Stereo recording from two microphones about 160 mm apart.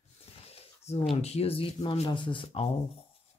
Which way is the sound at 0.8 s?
40° left (ahead or behind).